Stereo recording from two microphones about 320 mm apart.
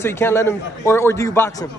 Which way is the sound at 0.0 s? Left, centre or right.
Centre.